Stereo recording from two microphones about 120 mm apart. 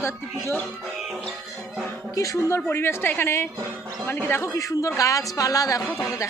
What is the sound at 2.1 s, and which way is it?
A woman's voice, 25° left (ahead or behind).